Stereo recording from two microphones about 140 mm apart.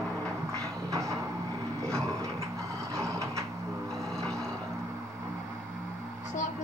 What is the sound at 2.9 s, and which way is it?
Vehicle, 20° right (ahead or behind).